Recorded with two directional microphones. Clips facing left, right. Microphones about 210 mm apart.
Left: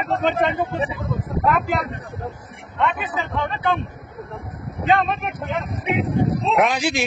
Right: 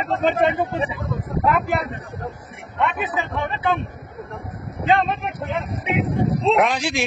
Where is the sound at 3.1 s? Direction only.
15° right (ahead or behind).